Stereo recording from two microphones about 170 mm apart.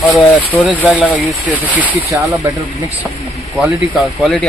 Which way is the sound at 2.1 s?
20° right (ahead or behind).